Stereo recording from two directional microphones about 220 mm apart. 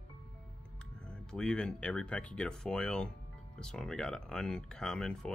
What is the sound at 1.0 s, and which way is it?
Speech, 5° left (ahead or behind).